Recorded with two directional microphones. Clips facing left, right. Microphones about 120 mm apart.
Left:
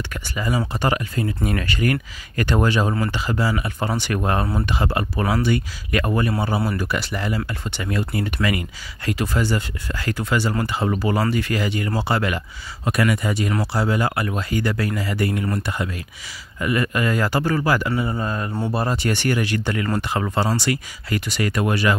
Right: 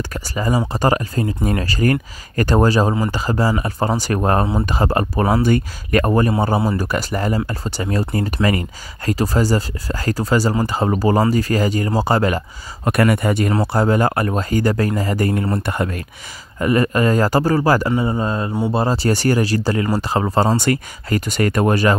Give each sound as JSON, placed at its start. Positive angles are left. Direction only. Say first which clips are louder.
{"t": 0.1, "sound": "speech", "louder": "right 4 dB", "side_deg": -40}
{"t": 12.9, "sound": "speech", "louder": "right 5 dB", "side_deg": -55}
{"t": 16.5, "sound": "speech", "louder": "right 5 dB", "side_deg": -40}
{"t": 17.9, "sound": "speech", "louder": "right 5 dB", "side_deg": -15}
{"t": 18.2, "sound": "mantra", "louder": "right 4 dB", "side_deg": -30}
{"t": 18.7, "sound": "speech", "louder": "right 5 dB", "side_deg": -30}